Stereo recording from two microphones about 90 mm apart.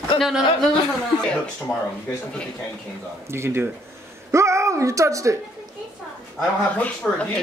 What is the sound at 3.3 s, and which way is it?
Speech, 25° right (ahead or behind).